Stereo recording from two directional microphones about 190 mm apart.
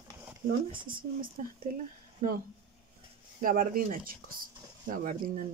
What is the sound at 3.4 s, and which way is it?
Speech, 45° right (ahead or behind).